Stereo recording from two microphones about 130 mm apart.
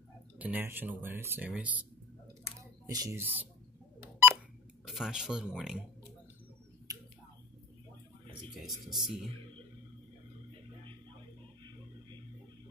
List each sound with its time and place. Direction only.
0.4 s speech: 15° right (ahead or behind)
2.9 s speech: 30° right (ahead or behind)
3.2 s speech: 15° right (ahead or behind)
4.0 s pulse: 20° right (ahead or behind)
4.8 s speech: centre (ahead or behind)
8.5 s speech: centre (ahead or behind)